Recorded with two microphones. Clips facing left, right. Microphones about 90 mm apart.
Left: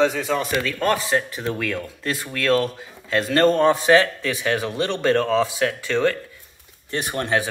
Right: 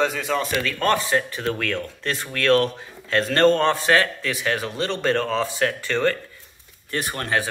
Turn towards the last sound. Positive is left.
turn(degrees=20)  # may be behind; listen again after turning